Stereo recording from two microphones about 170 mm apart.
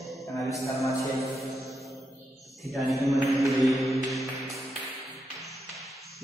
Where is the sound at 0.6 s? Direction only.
15° left (ahead or behind).